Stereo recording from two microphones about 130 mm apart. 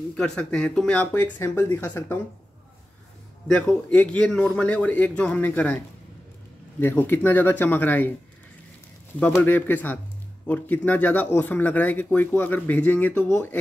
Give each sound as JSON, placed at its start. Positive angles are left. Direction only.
{"t": 0.1, "sound": "speech", "side_deg": 5}
{"t": 3.6, "sound": "speech", "side_deg": 10}
{"t": 9.2, "sound": "speech", "side_deg": 10}